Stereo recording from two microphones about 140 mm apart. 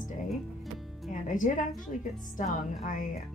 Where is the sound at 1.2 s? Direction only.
70° left (ahead or behind).